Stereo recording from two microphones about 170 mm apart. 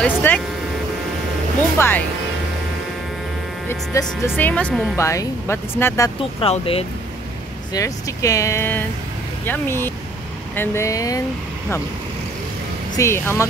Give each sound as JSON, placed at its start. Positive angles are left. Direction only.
{"t": 0.0, "sound": "speech", "side_deg": 10}
{"t": 1.8, "sound": "speech", "side_deg": 10}
{"t": 4.4, "sound": "speech", "side_deg": 10}
{"t": 6.4, "sound": "speech", "side_deg": 35}
{"t": 7.7, "sound": "speech", "side_deg": 20}
{"t": 12.9, "sound": "speech", "side_deg": 15}